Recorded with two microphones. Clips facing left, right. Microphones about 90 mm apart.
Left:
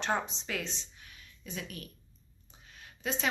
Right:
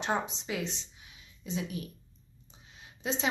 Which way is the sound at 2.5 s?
20° right (ahead or behind).